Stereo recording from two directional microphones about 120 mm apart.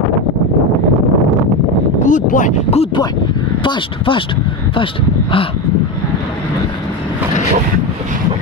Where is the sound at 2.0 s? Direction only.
90° left.